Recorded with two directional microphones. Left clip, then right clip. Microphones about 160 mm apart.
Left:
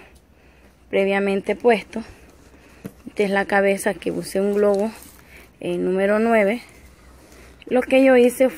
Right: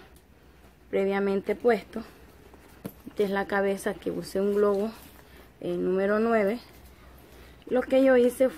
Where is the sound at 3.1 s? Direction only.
20° left (ahead or behind).